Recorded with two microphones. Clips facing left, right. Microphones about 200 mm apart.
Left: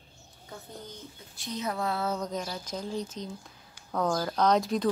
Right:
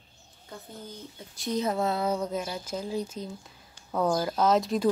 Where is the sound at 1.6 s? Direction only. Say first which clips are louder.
Right 2 dB; 25° right (ahead or behind).